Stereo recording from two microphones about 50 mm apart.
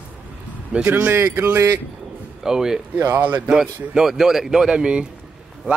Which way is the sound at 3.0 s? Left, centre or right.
Right.